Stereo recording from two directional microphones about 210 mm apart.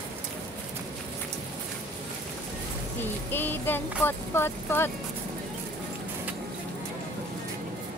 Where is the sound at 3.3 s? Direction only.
10° left (ahead or behind).